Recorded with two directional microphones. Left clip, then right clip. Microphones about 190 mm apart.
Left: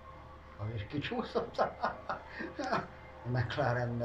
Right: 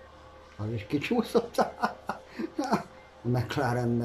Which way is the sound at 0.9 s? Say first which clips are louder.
Right 9 dB; 50° right (ahead or behind).